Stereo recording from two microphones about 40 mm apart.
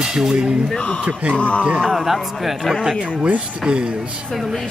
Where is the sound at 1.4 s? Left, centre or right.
Left.